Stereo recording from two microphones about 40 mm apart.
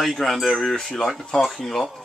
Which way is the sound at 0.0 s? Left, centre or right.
Centre.